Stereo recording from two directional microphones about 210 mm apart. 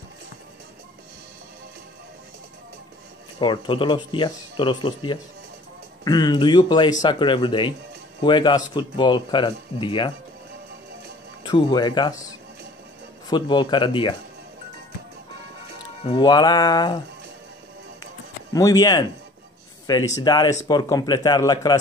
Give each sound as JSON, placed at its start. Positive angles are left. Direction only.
{"t": 3.3, "sound": "speech", "side_deg": 25}
{"t": 11.4, "sound": "speech", "side_deg": 20}
{"t": 13.3, "sound": "speech", "side_deg": 20}
{"t": 16.0, "sound": "speech", "side_deg": 25}
{"t": 18.5, "sound": "speech", "side_deg": 15}
{"t": 20.2, "sound": "speech", "side_deg": 20}